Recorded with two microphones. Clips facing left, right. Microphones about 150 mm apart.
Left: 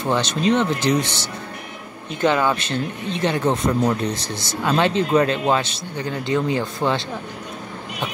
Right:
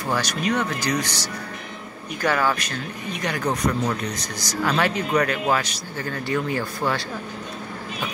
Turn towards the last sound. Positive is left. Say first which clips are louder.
# left 3 dB
turn(degrees=20)  # may be behind; listen again after turning